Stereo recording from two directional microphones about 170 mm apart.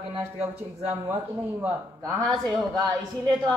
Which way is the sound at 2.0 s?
Centre (ahead or behind).